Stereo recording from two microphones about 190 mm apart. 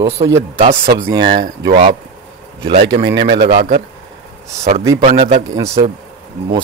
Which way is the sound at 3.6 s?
40° right (ahead or behind).